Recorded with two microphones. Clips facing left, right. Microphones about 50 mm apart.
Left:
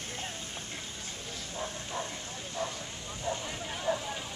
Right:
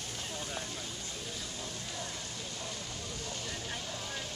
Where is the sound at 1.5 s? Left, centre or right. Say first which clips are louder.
Left 5 dB; left.